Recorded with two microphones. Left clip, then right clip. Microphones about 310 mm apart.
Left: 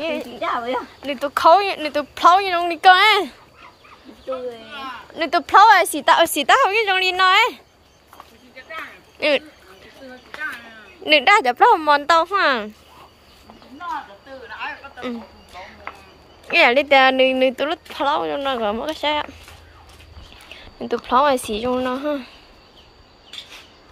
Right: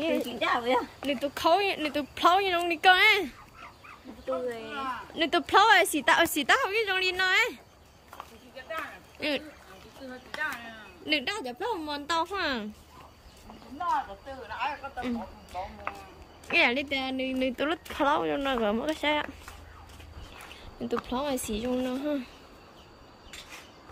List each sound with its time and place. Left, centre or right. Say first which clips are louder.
0.7 s speech: left 3 dB; centre
4.3 s speech: left 4 dB; right
5.1 s speech: left 9 dB; centre
9.2 s speech: left 13 dB; centre
11.1 s speech: left 16 dB; centre
16.5 s a woman's voice: left 12 dB; centre
20.5 s speech: left 7 dB; centre